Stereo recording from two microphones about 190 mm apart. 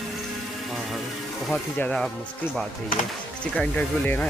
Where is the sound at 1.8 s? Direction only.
5° left (ahead or behind).